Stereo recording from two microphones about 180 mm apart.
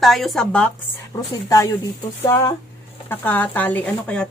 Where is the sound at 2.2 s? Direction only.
15° left (ahead or behind).